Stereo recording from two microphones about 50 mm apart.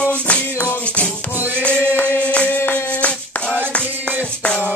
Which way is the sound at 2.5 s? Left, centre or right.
Left.